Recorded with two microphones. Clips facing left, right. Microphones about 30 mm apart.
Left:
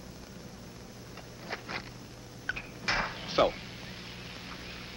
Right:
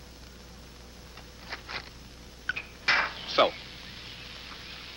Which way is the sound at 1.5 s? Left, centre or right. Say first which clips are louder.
Even; right.